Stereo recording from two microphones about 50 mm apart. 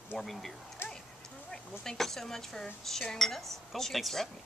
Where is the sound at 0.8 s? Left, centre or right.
Left.